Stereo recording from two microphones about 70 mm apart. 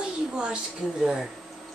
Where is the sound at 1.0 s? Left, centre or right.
Centre.